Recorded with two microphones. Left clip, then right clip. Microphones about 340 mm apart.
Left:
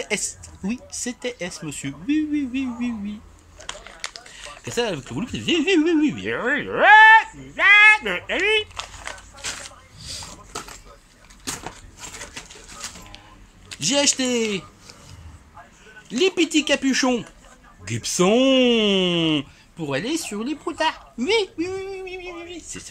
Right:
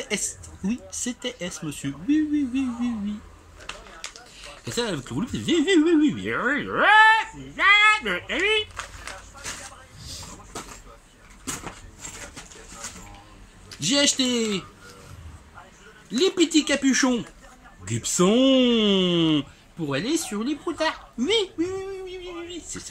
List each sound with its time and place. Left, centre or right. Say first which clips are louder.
0.0 s a woman's voice: left 3 dB; centre
3.6 s a sound: left 4 dB; left
4.7 s a child's voice: left 3 dB; centre
9.9 s a sound: left 6 dB; left
13.8 s a child's voice: left 1 dB; centre
16.1 s a child's voice: left 1 dB; centre